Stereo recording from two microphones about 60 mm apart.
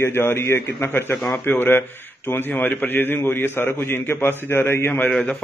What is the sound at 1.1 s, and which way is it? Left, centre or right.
Speech, centre.